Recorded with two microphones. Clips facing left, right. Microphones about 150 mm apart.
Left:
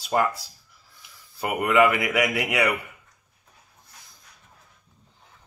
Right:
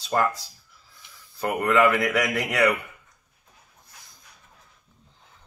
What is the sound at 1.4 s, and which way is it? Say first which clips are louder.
Speech: even; 10° left (ahead or behind).